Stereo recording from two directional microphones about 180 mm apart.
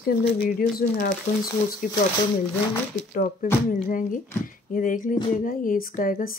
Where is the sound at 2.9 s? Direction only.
40° left (ahead or behind).